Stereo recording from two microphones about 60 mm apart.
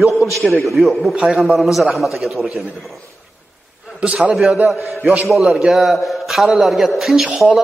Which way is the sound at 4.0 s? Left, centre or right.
Centre.